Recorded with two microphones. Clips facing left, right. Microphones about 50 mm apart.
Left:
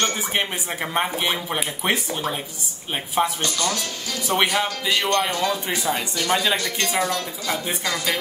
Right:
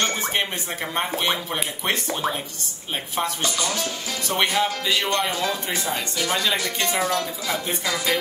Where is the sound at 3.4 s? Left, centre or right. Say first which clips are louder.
Left 1 dB; centre.